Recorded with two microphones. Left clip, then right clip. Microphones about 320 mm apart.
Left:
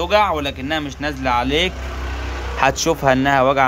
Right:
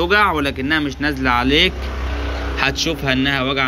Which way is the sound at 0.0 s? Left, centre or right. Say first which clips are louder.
Right 1 dB; centre.